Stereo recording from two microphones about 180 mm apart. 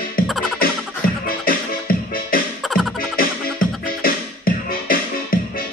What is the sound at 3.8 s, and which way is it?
Music, 50° left (ahead or behind).